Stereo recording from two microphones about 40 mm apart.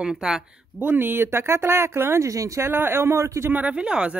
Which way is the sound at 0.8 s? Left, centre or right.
Right.